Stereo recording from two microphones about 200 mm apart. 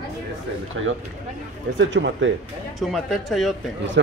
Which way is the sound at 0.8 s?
80° right.